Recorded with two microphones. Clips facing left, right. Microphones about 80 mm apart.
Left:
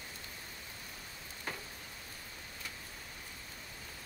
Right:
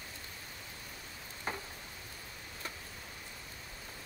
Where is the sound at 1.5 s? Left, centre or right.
Right.